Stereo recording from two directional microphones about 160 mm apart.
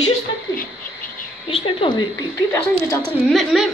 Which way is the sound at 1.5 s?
35° left (ahead or behind).